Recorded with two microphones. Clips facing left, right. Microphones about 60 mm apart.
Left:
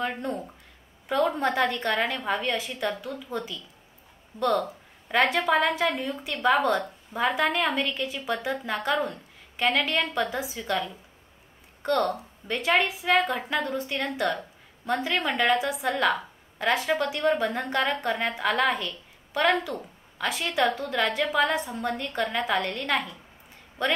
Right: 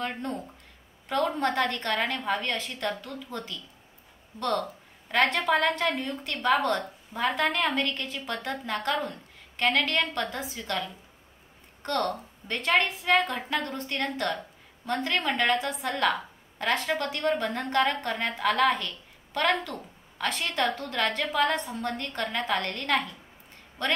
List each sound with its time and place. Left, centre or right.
0.0 s a woman's voice: centre